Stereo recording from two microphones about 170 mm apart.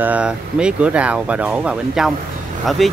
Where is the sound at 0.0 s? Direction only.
5° right (ahead or behind).